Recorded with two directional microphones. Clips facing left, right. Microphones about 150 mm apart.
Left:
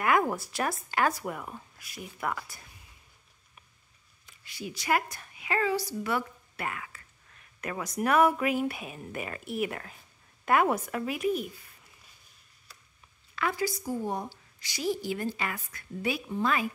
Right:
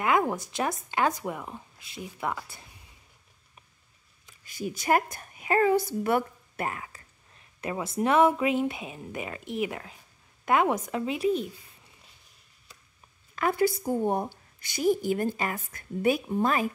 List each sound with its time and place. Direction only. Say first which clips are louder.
0.0 s speech: right 1 dB; 20° right (ahead or behind)
4.6 s a woman's voice: right 4 dB; 45° right (ahead or behind)
6.6 s a sound: right 3 dB; 35° right (ahead or behind)
7.7 s speech: right 2 dB; 25° right (ahead or behind)
11.1 s speech: right 3 dB; 30° right (ahead or behind)
13.4 s a woman's voice: right 6 dB; 50° right (ahead or behind)